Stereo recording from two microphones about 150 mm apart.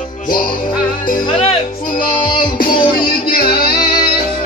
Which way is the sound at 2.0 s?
65° left (ahead or behind).